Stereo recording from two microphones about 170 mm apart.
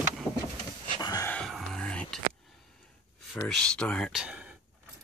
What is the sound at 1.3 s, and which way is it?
Whispering, 5° left (ahead or behind).